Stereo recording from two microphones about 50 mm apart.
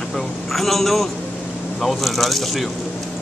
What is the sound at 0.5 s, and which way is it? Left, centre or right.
Speech, centre.